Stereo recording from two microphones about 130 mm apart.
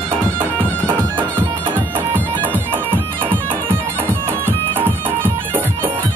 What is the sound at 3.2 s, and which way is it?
Music, 15° right (ahead or behind).